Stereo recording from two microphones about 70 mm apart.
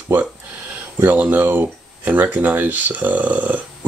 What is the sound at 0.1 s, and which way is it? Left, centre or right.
Speech, right.